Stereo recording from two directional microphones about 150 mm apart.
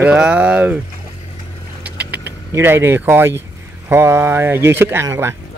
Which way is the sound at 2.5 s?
15° right (ahead or behind).